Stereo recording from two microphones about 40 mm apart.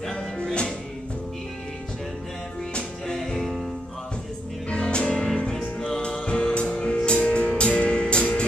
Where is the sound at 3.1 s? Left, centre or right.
Centre.